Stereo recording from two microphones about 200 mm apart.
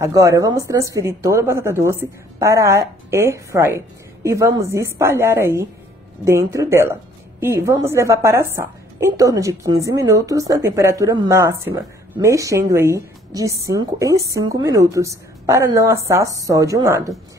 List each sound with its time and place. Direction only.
0.0 s a woman's voice: 15° right (ahead or behind)